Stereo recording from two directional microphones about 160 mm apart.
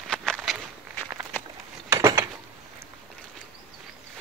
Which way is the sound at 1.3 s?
15° left (ahead or behind).